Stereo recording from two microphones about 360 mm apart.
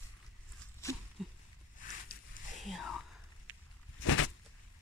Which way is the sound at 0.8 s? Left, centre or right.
Centre.